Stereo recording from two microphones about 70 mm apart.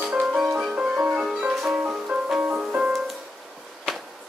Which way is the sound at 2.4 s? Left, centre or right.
Centre.